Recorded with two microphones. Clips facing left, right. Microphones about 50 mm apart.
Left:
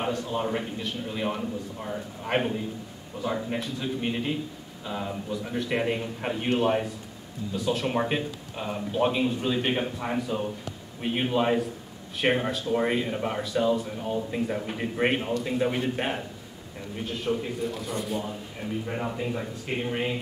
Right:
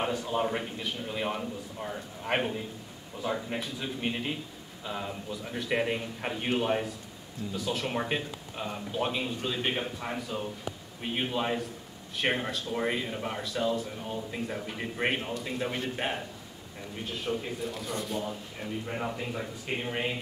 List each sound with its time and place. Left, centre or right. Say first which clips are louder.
0.0 s a man's voice: left 1 dB; centre